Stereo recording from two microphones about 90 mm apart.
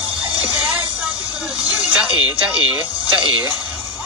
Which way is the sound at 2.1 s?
55° left (ahead or behind).